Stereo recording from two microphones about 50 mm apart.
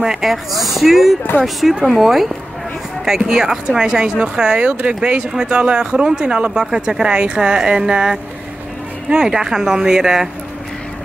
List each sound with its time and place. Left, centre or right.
0.0 s speech: centre